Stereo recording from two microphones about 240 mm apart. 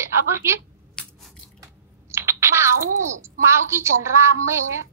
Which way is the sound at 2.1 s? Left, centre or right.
Centre.